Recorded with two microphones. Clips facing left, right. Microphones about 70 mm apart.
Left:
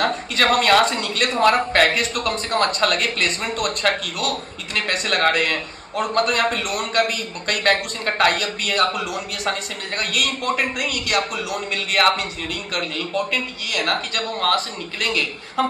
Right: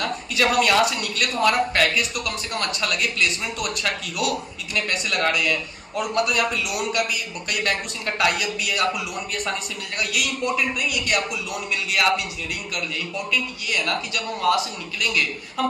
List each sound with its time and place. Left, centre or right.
0.0 s a man's voice: left